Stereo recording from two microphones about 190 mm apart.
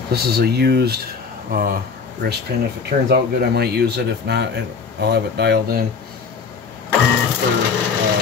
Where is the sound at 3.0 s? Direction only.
60° right (ahead or behind).